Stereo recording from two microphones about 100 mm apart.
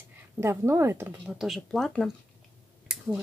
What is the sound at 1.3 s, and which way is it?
Speech, centre (ahead or behind).